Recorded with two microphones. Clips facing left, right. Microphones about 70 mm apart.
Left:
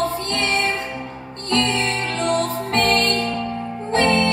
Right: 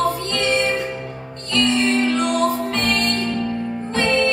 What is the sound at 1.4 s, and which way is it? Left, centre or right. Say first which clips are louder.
Music: right 2 dB; left.